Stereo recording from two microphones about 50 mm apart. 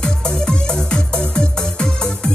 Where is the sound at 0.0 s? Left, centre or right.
Centre.